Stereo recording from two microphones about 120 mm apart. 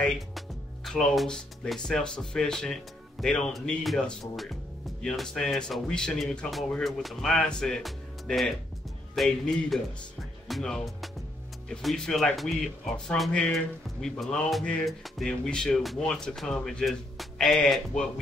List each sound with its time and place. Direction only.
0.8 s speech: 5° left (ahead or behind)